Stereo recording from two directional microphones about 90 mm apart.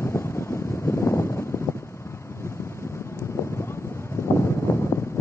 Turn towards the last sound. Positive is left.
turn(degrees=20)  # may be behind; listen again after turning